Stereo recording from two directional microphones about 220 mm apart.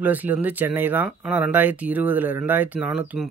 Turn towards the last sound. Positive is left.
turn(degrees=-5)  # may be behind; listen again after turning